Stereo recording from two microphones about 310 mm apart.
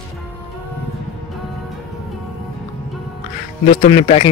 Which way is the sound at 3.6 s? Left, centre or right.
Left.